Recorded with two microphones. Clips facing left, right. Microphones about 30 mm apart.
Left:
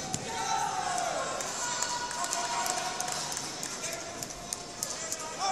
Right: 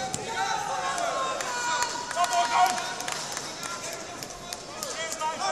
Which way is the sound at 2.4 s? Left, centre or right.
Right.